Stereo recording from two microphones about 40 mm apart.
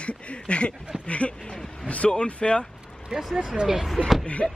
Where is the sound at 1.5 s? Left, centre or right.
Centre.